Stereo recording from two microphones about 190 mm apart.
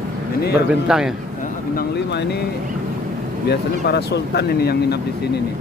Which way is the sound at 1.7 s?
60° left (ahead or behind).